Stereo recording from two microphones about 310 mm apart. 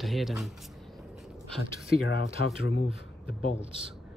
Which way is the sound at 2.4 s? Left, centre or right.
Left.